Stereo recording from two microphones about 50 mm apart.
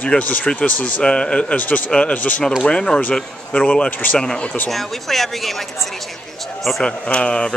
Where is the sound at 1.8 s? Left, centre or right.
Centre.